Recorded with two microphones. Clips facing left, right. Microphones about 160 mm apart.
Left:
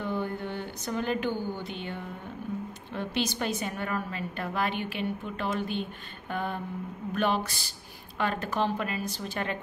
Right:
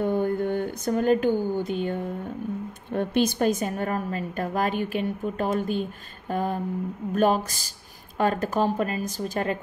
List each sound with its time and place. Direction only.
0.0 s a woman's voice: 50° right (ahead or behind)